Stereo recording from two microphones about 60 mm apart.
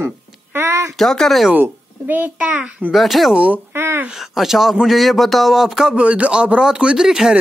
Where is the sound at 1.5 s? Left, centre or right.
Right.